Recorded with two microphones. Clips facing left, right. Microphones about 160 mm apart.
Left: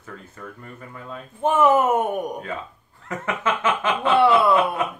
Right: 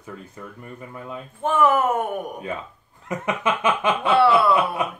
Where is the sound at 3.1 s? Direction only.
15° right (ahead or behind).